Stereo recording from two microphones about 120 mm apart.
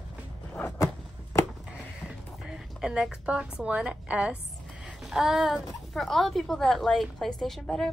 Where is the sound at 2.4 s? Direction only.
5° right (ahead or behind).